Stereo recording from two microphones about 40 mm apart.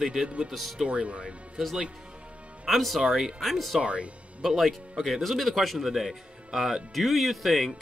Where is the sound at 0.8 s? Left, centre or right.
Right.